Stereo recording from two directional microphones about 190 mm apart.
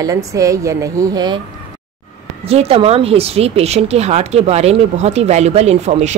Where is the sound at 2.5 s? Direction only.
30° right (ahead or behind).